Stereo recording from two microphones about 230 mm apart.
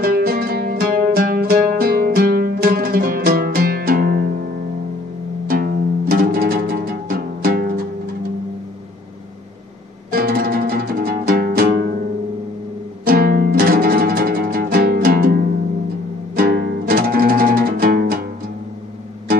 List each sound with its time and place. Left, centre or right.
0.0 s music: right
5.5 s music: right
10.1 s music: right
13.0 s music: right